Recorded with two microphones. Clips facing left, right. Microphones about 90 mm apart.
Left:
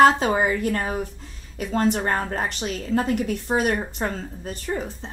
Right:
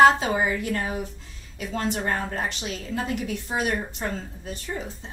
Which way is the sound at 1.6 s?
45° left (ahead or behind).